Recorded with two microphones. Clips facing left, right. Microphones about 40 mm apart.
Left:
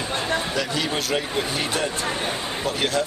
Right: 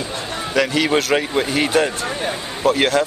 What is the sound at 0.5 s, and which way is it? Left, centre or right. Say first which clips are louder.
Speech: right 8 dB; right.